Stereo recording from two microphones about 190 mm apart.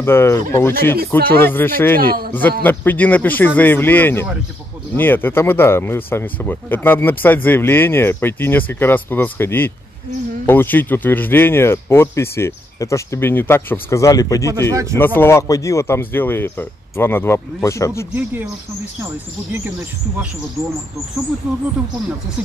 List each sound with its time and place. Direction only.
0.0 s speech: 10° left (ahead or behind)
2.0 s speech: 50° right (ahead or behind)
2.6 s speech: 10° left (ahead or behind)
14.7 s speech: 15° right (ahead or behind)
15.0 s speech: 10° left (ahead or behind)
18.1 s speech: 10° right (ahead or behind)